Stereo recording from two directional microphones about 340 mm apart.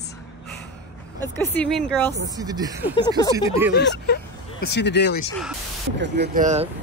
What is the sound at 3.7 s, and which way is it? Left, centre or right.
Speech, left.